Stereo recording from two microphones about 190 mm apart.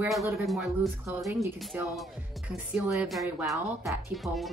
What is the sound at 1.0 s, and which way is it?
Speech, 15° right (ahead or behind).